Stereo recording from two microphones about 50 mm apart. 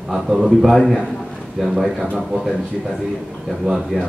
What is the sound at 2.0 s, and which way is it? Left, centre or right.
Speech, centre.